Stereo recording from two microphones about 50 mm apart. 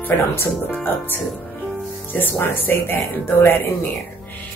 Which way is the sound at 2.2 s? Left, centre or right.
Left.